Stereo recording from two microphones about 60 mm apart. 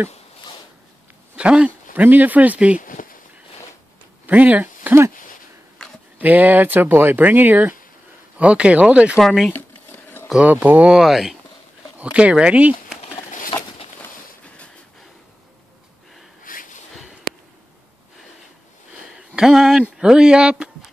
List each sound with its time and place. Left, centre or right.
1.3 s speech: centre
2.0 s speech: right
4.3 s speech: right
6.1 s speech: right
9.2 s speech: centre
9.5 s a sound: left
10.5 s speech: right
10.9 s speech: centre
12.0 s speech: centre
19.1 s a sound: centre
20.0 s speech: centre